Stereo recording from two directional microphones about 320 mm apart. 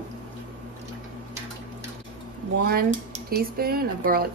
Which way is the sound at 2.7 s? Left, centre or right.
Right.